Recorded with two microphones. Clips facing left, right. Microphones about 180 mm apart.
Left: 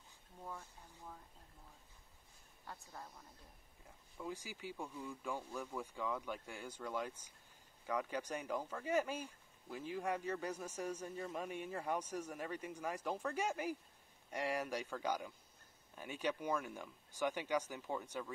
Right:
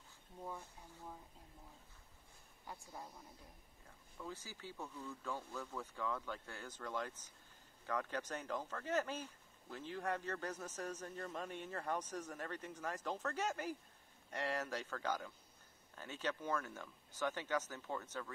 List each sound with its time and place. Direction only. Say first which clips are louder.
0.5 s speech: even; 15° right (ahead or behind)
2.6 s speech: right 1 dB; 15° right (ahead or behind)
4.2 s speech: left 3 dB; 15° left (ahead or behind)